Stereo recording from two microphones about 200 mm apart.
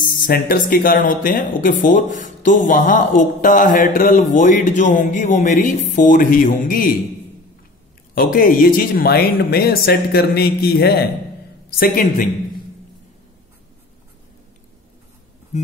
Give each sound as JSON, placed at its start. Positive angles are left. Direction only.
{"t": 0.0, "sound": "speech", "side_deg": 45}
{"t": 8.1, "sound": "speech", "side_deg": 45}